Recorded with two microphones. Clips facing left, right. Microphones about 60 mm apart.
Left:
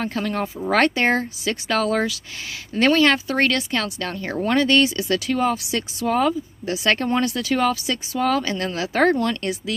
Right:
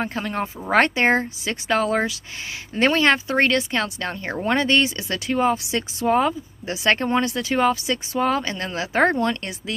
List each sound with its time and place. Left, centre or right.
0.0 s speech: centre